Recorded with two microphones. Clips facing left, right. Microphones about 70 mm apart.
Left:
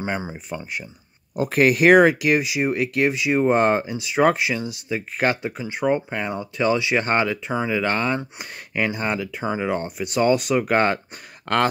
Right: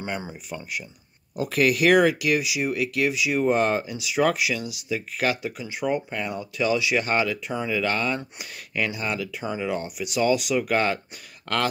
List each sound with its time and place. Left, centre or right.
0.0 s speech: left